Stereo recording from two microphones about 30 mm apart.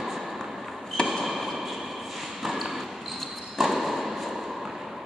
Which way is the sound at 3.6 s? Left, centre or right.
Centre.